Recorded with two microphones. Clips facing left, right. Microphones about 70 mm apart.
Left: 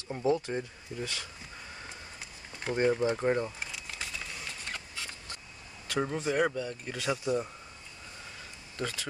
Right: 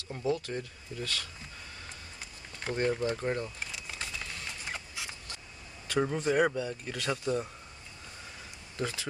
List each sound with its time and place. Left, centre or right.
0.1 s speech: left
2.7 s speech: centre
3.5 s a sound: centre
4.6 s printer: centre
5.9 s speech: centre
8.7 s speech: centre